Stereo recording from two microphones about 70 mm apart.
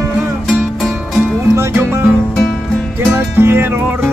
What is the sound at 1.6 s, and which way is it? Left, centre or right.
Music, right.